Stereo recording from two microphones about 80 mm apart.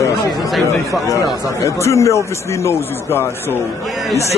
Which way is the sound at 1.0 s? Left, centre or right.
Left.